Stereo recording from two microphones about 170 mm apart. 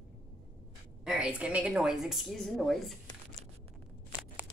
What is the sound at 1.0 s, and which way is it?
A woman's voice, 5° right (ahead or behind).